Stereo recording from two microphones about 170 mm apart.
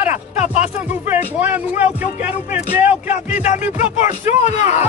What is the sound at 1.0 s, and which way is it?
Speech, 10° right (ahead or behind).